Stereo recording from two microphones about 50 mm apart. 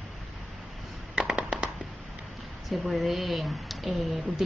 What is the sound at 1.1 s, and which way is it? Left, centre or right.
Fireworks, centre.